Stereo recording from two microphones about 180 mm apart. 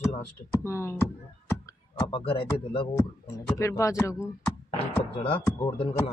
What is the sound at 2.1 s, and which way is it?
Speech, 30° left (ahead or behind).